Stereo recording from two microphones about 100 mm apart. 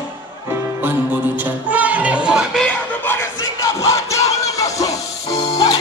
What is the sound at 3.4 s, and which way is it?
Crowd, 30° left (ahead or behind).